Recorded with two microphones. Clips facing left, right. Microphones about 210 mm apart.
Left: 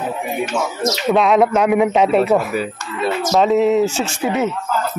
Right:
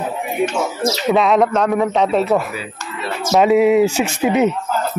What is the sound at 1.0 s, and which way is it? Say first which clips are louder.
Speech: left 1 dB; centre (ahead or behind).